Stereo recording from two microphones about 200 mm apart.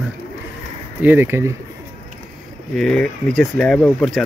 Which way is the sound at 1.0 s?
10° right (ahead or behind).